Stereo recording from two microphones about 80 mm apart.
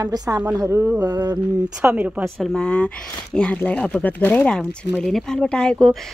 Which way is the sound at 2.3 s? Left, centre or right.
Centre.